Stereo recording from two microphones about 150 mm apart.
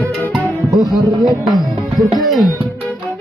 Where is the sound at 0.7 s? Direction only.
25° right (ahead or behind).